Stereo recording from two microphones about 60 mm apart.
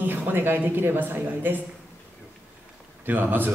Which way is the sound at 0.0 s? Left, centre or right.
Right.